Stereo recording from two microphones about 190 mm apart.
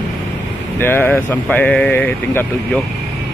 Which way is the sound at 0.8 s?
10° left (ahead or behind).